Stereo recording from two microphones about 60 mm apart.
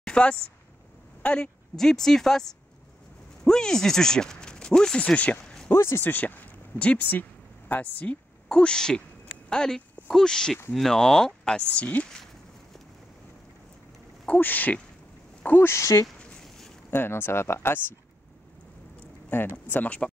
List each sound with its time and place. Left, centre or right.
0.0 s a woman's voice: centre
1.8 s speech: centre; by 5.4 s left
5.7 s speech: left
6.0 s speech: left; by 9.0 s centre
9.5 s a sound: centre
10.1 s speech: centre
14.2 s speech: left
15.6 s speech: left
16.3 s a sound: centre
16.9 s speech: left
19.3 s speech: left